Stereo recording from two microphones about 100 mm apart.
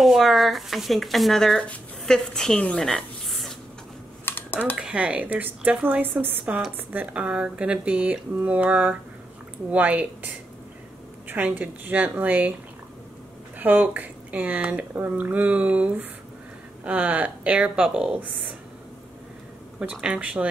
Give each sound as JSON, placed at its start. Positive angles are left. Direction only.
{"t": 0.0, "sound": "speech", "side_deg": 0}
{"t": 4.3, "sound": "typing", "side_deg": 20}
{"t": 4.7, "sound": "speech", "side_deg": -10}
{"t": 13.6, "sound": "speech", "side_deg": -15}
{"t": 19.8, "sound": "speech", "side_deg": -10}